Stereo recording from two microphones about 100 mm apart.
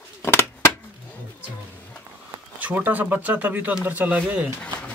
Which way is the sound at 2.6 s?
15° right (ahead or behind).